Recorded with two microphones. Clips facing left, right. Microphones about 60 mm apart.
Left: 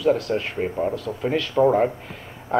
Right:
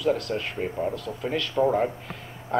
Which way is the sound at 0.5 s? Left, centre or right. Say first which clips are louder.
Left 4 dB; centre.